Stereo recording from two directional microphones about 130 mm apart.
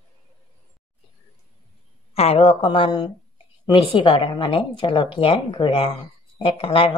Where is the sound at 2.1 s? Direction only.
50° left (ahead or behind).